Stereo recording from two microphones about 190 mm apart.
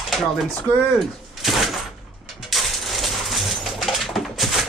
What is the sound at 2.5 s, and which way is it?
Coin, centre (ahead or behind).